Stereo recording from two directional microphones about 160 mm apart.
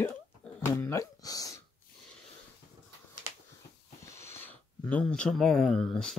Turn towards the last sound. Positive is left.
turn(degrees=5)  # may be behind; listen again after turning